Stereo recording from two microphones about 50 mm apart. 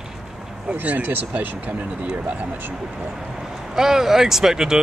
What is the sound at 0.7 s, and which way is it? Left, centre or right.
Speech, right.